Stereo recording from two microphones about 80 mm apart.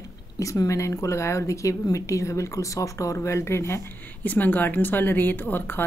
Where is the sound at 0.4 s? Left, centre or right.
Left.